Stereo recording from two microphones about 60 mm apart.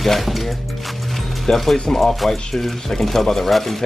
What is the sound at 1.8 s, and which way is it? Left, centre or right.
Speech, centre.